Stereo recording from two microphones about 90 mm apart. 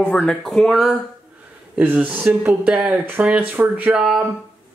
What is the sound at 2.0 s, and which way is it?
Speech, 15° right (ahead or behind).